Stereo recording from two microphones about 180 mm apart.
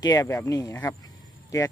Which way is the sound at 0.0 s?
20° left (ahead or behind).